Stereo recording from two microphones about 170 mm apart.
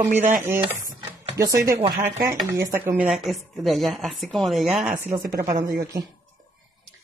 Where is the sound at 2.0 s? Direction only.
20° right (ahead or behind); by 4.9 s centre (ahead or behind).